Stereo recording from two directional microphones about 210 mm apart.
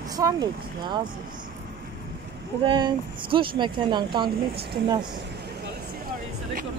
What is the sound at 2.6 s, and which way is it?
Speech, 20° right (ahead or behind).